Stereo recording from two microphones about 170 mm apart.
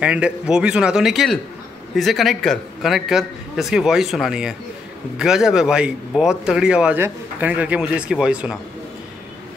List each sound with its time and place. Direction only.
0.0 s speech: 5° right (ahead or behind)